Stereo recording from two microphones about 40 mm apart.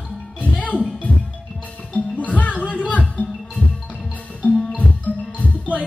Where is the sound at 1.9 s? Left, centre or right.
Left.